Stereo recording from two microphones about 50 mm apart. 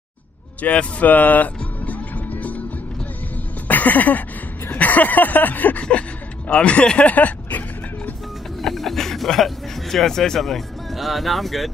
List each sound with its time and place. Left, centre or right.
0.6 s music: left
3.6 s a sound: left
6.5 s speech: left
8.6 s speech: centre